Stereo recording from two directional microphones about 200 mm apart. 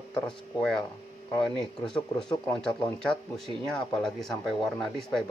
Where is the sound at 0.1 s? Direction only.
5° left (ahead or behind).